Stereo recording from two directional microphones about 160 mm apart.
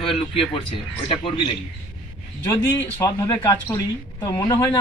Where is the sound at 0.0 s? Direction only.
35° left (ahead or behind).